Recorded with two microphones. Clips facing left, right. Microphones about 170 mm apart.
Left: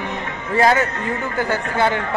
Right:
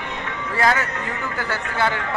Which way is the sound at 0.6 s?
25° left (ahead or behind).